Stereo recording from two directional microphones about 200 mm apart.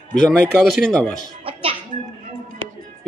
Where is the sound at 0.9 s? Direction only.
5° left (ahead or behind).